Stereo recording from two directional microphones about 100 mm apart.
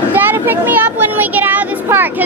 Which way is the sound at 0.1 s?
20° right (ahead or behind).